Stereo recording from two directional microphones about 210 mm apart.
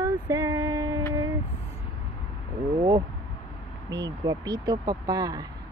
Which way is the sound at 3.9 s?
15° right (ahead or behind).